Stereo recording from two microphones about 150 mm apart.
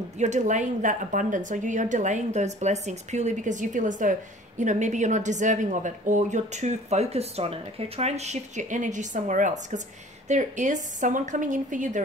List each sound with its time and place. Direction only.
0.2 s a woman's voice: 50° right (ahead or behind)